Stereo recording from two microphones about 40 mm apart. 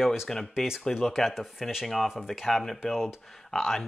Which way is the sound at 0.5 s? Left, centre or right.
Centre.